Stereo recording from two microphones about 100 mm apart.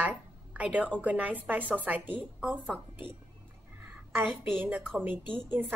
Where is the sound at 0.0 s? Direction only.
15° right (ahead or behind).